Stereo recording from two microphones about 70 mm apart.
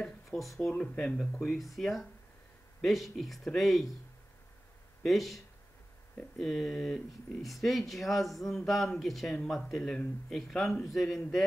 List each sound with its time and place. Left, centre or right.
0.3 s speech: centre
1.5 s speech: centre
5.0 s speech: centre